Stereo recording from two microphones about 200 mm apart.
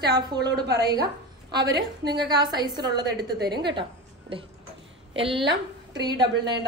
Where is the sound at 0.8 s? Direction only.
20° right (ahead or behind).